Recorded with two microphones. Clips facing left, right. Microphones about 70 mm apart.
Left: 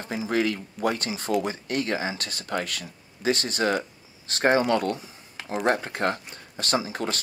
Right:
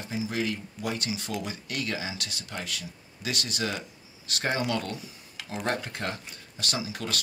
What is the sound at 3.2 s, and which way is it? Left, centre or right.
Speech, left.